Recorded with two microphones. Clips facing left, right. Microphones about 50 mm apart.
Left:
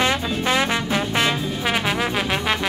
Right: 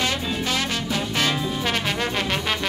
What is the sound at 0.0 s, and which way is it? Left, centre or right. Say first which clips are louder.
Music: left 4 dB; left.